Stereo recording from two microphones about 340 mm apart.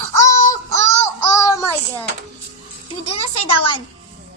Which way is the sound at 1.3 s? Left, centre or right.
Centre.